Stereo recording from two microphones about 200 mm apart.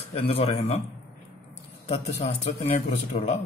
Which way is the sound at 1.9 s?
30° left (ahead or behind).